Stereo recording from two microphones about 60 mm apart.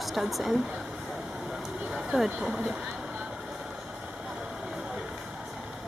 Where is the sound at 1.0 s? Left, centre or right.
Centre.